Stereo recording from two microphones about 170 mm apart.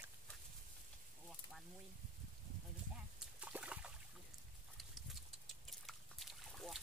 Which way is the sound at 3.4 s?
10° right (ahead or behind).